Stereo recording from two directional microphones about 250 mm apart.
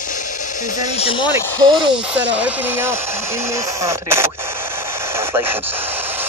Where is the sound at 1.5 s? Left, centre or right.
Centre.